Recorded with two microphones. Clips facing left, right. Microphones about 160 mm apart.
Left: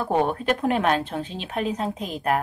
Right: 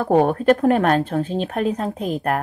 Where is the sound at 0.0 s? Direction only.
45° right (ahead or behind).